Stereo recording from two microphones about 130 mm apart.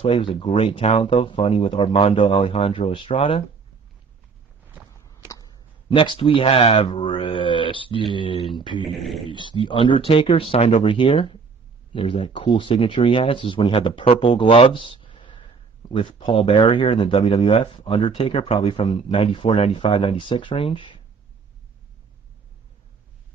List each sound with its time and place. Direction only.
0.0 s speech: 45° left (ahead or behind)
4.6 s walk: 15° right (ahead or behind)
5.9 s speech: 40° left (ahead or behind)
8.8 s speech: centre (ahead or behind)
9.3 s speech: 40° left (ahead or behind)